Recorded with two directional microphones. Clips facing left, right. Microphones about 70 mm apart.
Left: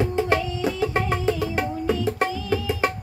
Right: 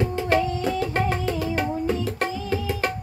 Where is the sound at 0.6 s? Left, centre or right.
Centre.